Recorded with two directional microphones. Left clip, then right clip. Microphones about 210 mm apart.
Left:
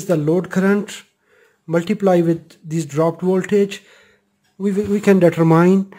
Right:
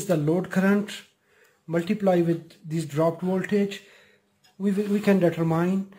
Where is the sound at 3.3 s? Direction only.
45° left (ahead or behind).